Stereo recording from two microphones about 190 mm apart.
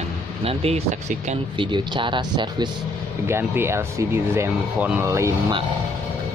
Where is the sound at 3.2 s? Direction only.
10° right (ahead or behind).